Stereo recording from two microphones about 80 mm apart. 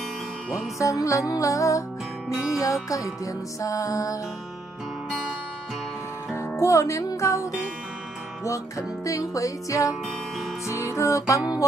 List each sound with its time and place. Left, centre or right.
0.7 s music: left
6.6 s music: left
8.5 s music: left